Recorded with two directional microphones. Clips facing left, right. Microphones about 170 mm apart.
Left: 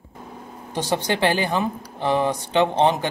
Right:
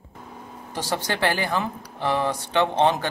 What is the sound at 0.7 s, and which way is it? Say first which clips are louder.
Speech: left 4 dB; 20° left (ahead or behind).